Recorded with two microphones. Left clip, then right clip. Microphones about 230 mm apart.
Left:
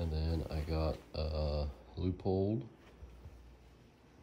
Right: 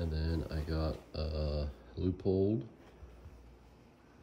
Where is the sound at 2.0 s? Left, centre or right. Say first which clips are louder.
Right 3 dB; centre.